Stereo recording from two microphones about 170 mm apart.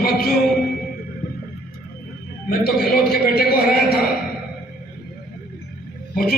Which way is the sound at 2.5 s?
65° left (ahead or behind).